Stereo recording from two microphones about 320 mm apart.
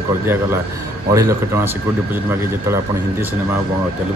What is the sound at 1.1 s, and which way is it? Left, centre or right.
Speech, centre.